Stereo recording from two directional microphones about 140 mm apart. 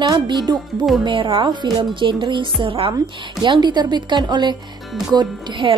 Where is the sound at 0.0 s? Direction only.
30° right (ahead or behind).